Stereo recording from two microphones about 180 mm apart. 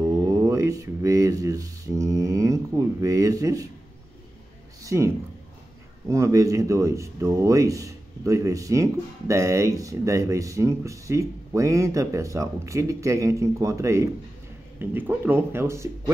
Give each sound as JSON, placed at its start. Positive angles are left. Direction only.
{"t": 0.0, "sound": "mantra", "side_deg": -20}
{"t": 4.8, "sound": "speech", "side_deg": -15}